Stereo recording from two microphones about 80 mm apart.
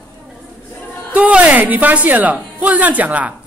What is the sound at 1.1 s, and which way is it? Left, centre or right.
Speech, centre.